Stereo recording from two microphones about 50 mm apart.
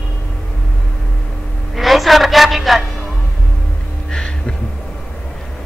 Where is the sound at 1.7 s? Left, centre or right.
Centre.